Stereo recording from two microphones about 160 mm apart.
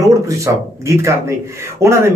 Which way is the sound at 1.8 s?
15° right (ahead or behind).